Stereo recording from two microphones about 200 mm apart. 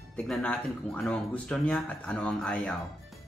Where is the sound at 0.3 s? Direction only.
5° left (ahead or behind).